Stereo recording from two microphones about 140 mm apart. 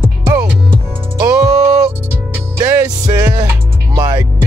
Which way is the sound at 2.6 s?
25° right (ahead or behind).